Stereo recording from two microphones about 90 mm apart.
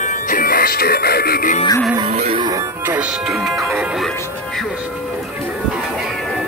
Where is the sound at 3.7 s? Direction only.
10° right (ahead or behind).